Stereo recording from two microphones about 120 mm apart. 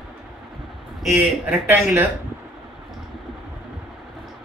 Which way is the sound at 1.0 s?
15° right (ahead or behind).